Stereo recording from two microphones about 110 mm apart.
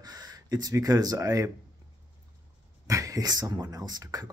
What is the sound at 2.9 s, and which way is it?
Speech, 30° right (ahead or behind).